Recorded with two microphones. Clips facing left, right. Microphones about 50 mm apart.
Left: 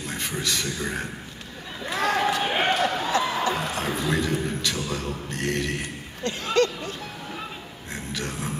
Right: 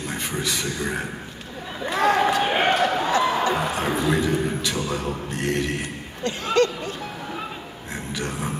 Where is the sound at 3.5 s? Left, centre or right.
Centre.